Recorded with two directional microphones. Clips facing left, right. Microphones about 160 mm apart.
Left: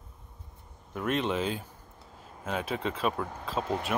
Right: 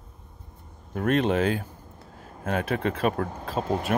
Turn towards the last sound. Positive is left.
turn(degrees=-35)  # may be behind; listen again after turning